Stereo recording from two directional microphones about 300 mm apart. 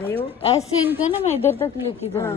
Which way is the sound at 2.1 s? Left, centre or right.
Centre.